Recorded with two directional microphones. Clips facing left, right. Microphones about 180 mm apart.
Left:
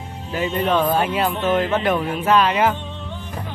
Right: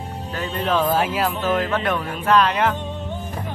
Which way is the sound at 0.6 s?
5° left (ahead or behind).